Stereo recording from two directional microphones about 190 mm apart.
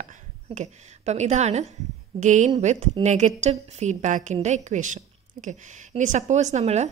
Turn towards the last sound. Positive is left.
turn(degrees=-35)  # may be behind; listen again after turning